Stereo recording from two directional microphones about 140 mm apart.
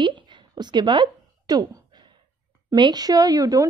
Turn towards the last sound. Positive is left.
turn(degrees=-25)  # may be behind; listen again after turning